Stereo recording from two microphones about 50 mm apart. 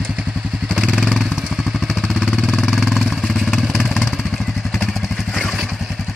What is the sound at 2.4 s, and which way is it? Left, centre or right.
Vehicle, centre.